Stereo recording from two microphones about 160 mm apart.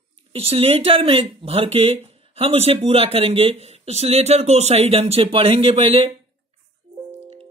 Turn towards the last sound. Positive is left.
turn(degrees=-35)  # may be behind; listen again after turning